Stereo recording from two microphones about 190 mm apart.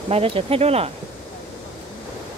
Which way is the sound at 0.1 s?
30° right (ahead or behind).